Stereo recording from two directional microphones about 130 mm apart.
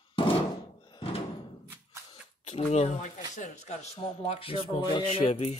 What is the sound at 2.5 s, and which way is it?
Speech, 55° left (ahead or behind).